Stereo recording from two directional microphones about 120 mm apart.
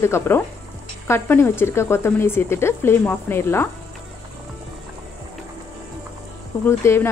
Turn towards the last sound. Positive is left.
turn(degrees=20)  # may be behind; listen again after turning